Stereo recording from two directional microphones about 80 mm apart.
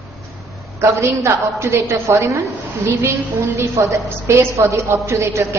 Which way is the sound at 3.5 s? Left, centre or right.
Right.